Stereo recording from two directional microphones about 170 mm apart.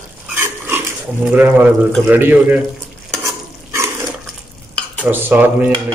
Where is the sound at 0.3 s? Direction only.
10° right (ahead or behind).